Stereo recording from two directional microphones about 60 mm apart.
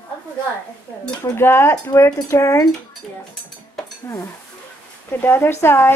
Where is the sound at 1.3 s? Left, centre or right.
Left.